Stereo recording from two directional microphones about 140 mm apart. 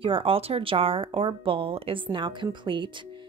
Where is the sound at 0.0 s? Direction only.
40° right (ahead or behind).